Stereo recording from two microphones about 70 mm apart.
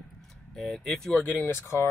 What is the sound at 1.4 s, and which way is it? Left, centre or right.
Speech, left.